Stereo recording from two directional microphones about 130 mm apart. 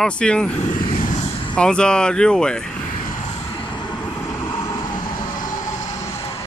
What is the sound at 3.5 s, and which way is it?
Vehicle, 35° left (ahead or behind).